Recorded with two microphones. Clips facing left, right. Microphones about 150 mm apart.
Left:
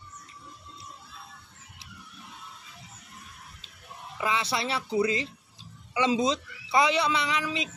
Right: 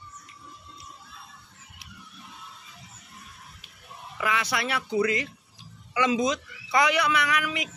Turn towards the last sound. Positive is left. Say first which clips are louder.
# right 2 dB
turn(degrees=25)  # may be behind; listen again after turning